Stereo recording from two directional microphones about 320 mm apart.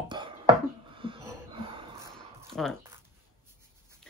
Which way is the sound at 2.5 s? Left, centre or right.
Centre.